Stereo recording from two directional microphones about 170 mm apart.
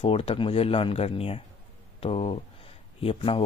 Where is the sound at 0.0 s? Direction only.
30° left (ahead or behind).